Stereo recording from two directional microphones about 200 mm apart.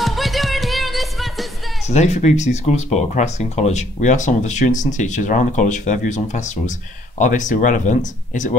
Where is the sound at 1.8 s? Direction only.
35° left (ahead or behind).